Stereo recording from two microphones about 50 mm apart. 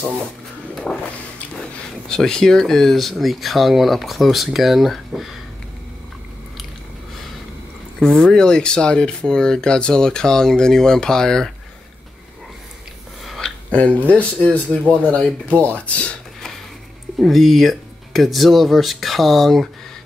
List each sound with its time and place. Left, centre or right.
0.9 s speech: centre
2.0 s speech: centre
8.0 s speech: centre
13.7 s speech: left
17.2 s speech: centre